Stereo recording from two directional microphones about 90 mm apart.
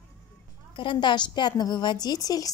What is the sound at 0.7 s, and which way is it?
A woman's voice, 65° left (ahead or behind).